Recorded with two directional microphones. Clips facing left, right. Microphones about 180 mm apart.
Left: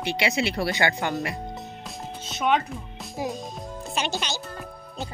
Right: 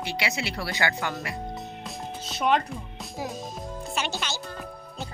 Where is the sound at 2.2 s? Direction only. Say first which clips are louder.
Left 1 dB; centre (ahead or behind).